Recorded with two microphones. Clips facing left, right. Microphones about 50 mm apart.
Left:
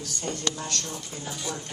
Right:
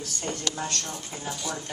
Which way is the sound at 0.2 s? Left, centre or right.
Right.